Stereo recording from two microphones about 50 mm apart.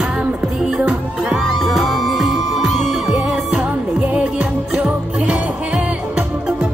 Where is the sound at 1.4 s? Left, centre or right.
Centre.